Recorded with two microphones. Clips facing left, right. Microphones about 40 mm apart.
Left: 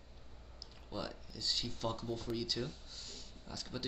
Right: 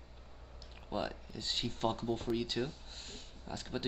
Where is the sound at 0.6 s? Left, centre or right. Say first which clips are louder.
Right 5 dB; right.